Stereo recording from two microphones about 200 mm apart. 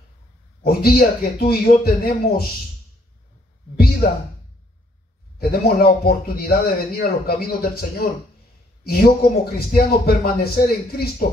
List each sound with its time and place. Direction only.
0.7 s speech: 50° left (ahead or behind)
5.4 s speech: 50° left (ahead or behind)